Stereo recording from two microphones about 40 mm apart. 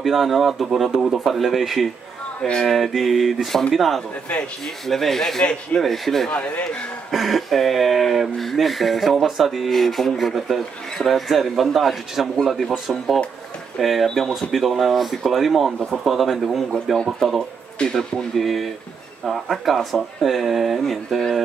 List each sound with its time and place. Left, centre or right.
0.0 s speech: centre
5.4 s speech: left
5.8 s speech: centre
6.3 s speech: left
7.1 s speech: centre
17.4 s speech: left
18.3 s speech: centre